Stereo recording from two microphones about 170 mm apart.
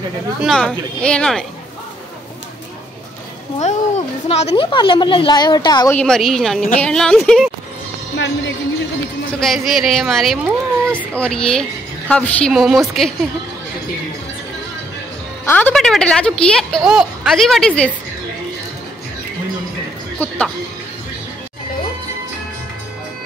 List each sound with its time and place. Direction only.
0.4 s a woman's voice: centre (ahead or behind)
4.3 s a woman's voice: 35° left (ahead or behind)
5.9 s a woman's voice: 5° left (ahead or behind)
9.3 s a woman's voice: centre (ahead or behind)
15.4 s a woman's voice: 10° left (ahead or behind)
20.2 s speech: 5° left (ahead or behind)